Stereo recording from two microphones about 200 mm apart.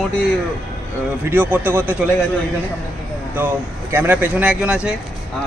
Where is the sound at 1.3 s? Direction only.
10° right (ahead or behind).